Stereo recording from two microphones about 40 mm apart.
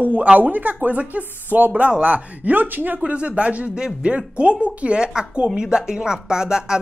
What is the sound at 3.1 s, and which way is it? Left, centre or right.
Speech, right.